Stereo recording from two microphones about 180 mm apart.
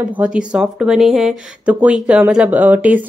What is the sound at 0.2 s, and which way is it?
Speech, 5° right (ahead or behind).